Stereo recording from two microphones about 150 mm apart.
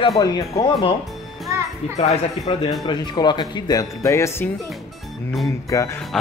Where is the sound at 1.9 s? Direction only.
45° left (ahead or behind); by 4.5 s 15° left (ahead or behind).